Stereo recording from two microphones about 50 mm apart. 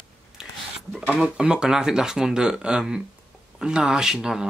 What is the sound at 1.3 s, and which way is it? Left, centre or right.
Speech, centre.